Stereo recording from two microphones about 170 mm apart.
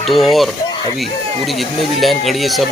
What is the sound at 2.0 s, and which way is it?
Speech, centre (ahead or behind).